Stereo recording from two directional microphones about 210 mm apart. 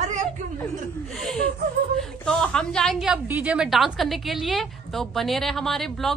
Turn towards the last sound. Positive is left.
turn(degrees=0)  # may be behind; listen again after turning